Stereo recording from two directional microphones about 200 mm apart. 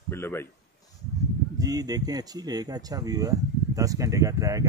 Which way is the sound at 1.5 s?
20° right (ahead or behind).